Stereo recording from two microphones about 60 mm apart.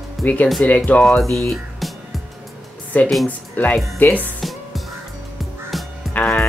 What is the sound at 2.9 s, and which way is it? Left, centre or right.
Speech, left.